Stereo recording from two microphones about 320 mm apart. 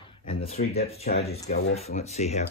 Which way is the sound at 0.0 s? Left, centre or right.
Centre.